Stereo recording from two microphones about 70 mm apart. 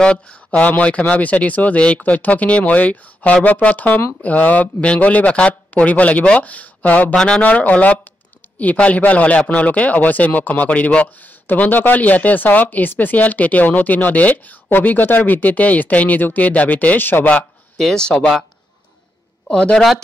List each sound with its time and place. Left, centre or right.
0.0 s speech: centre
7.2 s speech: centre; by 17.3 s left
17.7 s speech: centre
19.4 s a man's voice: centre